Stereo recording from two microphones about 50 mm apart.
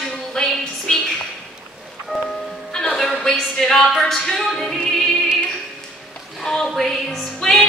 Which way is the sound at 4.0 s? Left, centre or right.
Centre.